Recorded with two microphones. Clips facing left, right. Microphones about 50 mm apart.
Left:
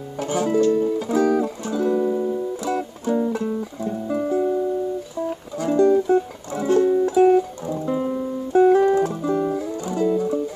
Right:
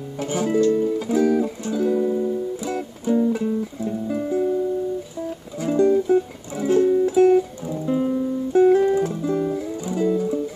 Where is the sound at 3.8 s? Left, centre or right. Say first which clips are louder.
Left 4 dB; centre.